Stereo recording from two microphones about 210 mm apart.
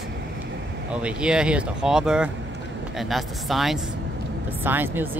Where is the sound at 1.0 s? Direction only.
5° right (ahead or behind).